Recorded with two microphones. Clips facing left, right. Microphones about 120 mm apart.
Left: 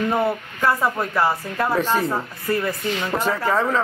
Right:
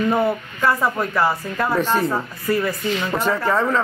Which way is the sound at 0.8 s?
5° left (ahead or behind).